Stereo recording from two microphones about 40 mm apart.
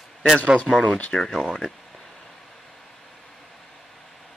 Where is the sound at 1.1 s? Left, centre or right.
Centre.